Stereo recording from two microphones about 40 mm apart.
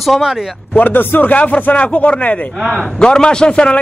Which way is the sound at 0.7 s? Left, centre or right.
Left.